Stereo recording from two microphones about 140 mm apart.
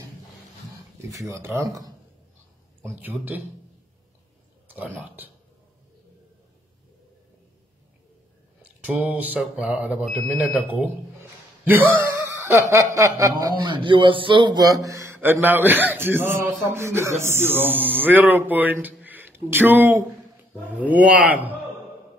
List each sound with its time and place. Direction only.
1.1 s snicker: 20° right (ahead or behind)
2.8 s a man's voice: 15° right (ahead or behind)
4.7 s a man's voice: 10° right (ahead or behind)
8.8 s a man's voice: 10° right (ahead or behind)
10.0 s speech: centre (ahead or behind)
10.3 s a man's voice: 10° right (ahead or behind)
11.6 s snicker: 15° right (ahead or behind)
17.2 s a man's voice: 15° right (ahead or behind)